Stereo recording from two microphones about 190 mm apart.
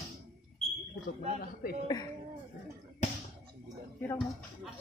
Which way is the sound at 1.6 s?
50° left (ahead or behind).